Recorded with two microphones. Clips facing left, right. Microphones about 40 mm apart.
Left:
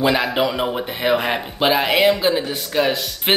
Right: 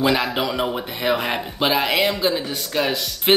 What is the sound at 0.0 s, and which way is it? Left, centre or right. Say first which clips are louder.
Speech: left 2 dB; centre.